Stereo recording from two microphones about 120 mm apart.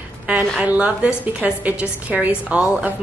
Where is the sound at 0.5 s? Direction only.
10° right (ahead or behind).